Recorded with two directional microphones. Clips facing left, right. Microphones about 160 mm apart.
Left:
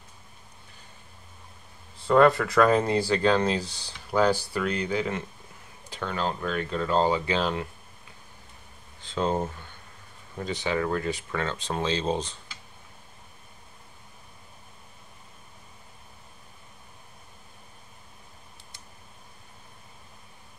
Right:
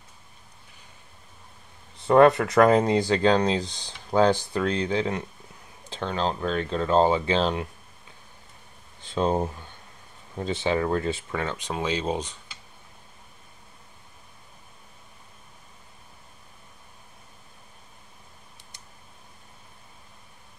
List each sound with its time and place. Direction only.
2.0 s speech: 20° right (ahead or behind)
9.0 s speech: 20° right (ahead or behind)